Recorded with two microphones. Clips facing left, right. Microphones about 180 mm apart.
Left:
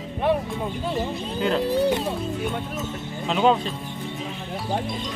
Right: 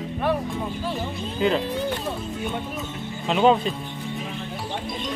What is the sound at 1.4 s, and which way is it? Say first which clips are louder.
Speech: right 2 dB; centre (ahead or behind).